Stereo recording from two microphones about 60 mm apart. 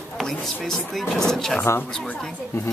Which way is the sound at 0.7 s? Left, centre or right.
Centre.